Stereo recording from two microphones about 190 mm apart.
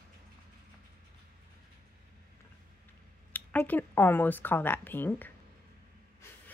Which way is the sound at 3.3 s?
10° left (ahead or behind).